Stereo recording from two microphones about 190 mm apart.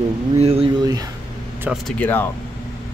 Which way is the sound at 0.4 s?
30° right (ahead or behind).